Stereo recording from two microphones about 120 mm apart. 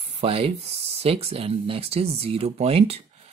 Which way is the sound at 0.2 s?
50° right (ahead or behind).